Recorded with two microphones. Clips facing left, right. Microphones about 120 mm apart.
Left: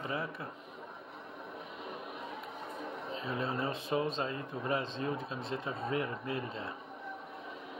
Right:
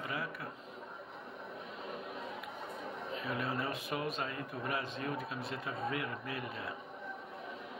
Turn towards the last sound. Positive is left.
turn(degrees=30)  # may be behind; listen again after turning